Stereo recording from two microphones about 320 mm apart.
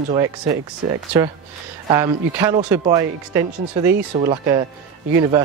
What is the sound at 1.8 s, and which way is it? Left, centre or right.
Speech, centre.